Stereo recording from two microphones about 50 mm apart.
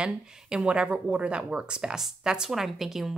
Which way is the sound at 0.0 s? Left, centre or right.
Centre.